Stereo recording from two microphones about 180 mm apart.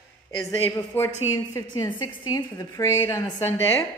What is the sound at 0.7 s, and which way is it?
A woman's voice, 15° left (ahead or behind).